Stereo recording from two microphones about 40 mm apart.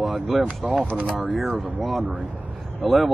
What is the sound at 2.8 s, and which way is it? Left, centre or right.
Speech, centre.